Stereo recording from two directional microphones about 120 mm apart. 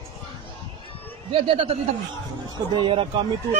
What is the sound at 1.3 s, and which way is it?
Speech, 50° right (ahead or behind).